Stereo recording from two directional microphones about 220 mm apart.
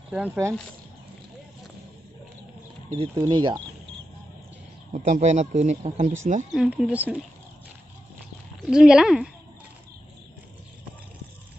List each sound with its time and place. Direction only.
0.1 s speech: 10° right (ahead or behind)
2.9 s speech: 25° right (ahead or behind)
4.9 s speech: 35° right (ahead or behind)
6.5 s speech: centre (ahead or behind)
8.6 s speech: 5° right (ahead or behind)